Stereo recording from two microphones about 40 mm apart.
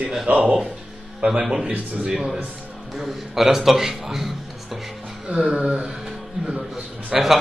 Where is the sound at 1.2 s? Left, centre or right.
Right.